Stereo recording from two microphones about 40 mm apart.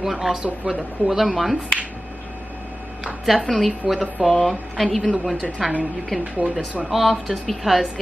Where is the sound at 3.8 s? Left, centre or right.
Centre.